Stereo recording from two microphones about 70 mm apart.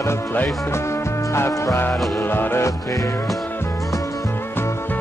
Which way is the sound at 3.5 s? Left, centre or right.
Left.